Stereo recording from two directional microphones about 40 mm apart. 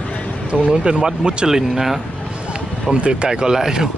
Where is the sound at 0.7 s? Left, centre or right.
Right.